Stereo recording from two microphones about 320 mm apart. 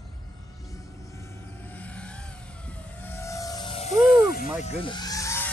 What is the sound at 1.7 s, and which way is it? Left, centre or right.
Vehicle, centre.